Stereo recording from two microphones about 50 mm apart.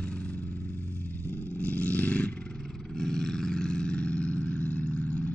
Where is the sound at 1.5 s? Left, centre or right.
Left.